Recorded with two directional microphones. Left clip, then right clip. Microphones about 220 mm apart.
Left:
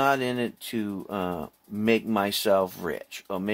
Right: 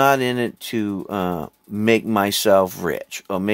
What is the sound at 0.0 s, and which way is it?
Speech, 40° right (ahead or behind).